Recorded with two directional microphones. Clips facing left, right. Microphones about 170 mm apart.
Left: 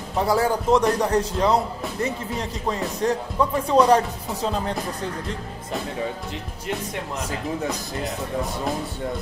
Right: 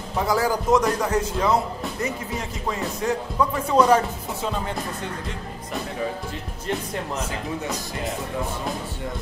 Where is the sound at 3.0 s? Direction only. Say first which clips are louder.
Left 2 dB; 35° left (ahead or behind).